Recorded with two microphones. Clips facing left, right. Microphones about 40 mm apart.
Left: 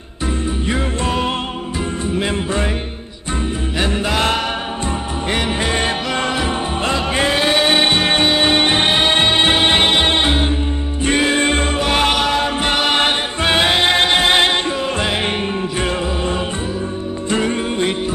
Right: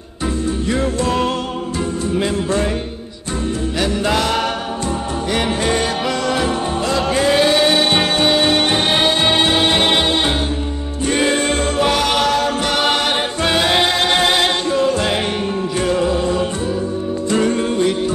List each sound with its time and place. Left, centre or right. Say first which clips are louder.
0.7 s music: right 4 dB; centre
5.3 s music: right 1 dB; centre
5.8 s music: even; left
11.3 s music: even; left
12.9 s choir: left 1 dB; left
14.0 s a capella: even; centre
14.3 s music: left 1 dB; left